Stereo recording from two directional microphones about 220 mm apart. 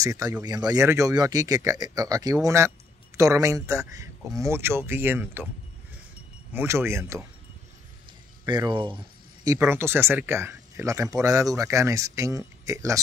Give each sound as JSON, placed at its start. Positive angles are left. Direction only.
{"t": 0.0, "sound": "speech", "side_deg": -15}
{"t": 6.5, "sound": "speech", "side_deg": -10}
{"t": 8.5, "sound": "speech", "side_deg": -20}